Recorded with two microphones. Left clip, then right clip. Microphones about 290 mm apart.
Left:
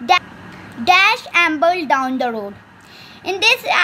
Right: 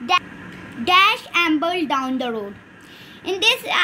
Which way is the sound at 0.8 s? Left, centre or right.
Left.